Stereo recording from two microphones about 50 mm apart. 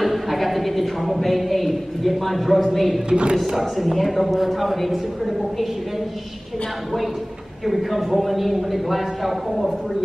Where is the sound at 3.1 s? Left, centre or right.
Centre.